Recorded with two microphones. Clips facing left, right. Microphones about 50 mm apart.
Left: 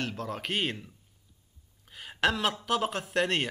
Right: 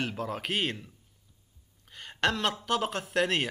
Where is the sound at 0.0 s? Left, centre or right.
Centre.